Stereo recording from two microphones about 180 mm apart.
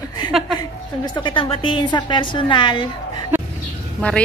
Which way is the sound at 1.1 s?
25° left (ahead or behind).